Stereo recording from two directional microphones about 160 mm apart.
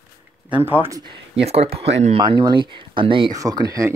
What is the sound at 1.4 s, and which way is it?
Speech, 40° right (ahead or behind).